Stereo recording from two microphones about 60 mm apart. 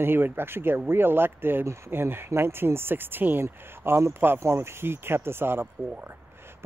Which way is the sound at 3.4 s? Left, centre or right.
Right.